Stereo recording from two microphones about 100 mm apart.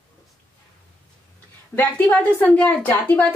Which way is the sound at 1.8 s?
15° left (ahead or behind).